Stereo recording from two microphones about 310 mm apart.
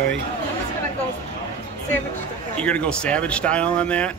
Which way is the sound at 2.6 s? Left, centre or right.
Centre.